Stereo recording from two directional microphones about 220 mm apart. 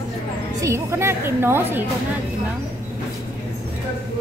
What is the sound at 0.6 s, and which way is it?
A woman's voice, 15° right (ahead or behind).